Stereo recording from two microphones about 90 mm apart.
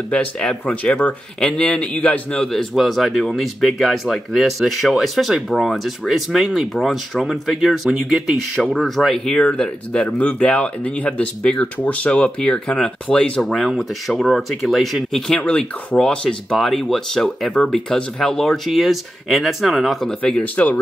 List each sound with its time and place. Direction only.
0.1 s a man's voice: 15° left (ahead or behind)
2.5 s speech: centre (ahead or behind)
15.3 s speech: 15° left (ahead or behind)
20.2 s a man's voice: 15° left (ahead or behind)